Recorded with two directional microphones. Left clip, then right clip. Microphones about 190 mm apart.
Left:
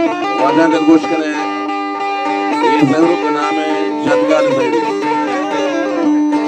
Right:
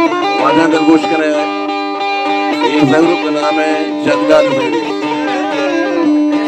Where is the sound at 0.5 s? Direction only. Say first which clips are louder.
Even; 25° left (ahead or behind).